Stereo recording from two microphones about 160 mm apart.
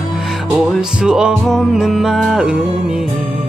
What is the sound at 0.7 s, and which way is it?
Music, 5° right (ahead or behind).